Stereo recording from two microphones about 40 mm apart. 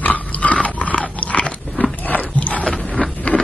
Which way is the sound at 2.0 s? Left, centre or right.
Left.